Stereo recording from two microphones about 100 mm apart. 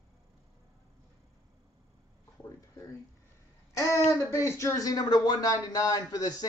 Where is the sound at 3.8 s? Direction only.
30° left (ahead or behind).